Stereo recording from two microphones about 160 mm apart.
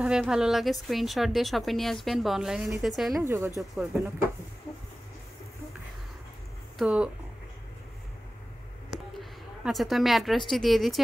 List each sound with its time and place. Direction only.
0.0 s speech: 5° right (ahead or behind)
3.3 s speech: 20° right (ahead or behind)
6.8 s speech: 5° right (ahead or behind)
8.9 s a woman's voice: centre (ahead or behind)